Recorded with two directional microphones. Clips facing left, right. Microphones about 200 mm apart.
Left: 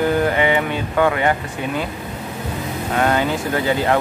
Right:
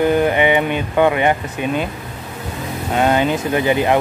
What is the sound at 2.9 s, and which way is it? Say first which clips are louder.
Speech: right 3 dB; 20° right (ahead or behind).